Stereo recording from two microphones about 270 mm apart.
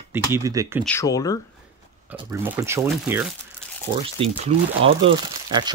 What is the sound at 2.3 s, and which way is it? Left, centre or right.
Speech, centre.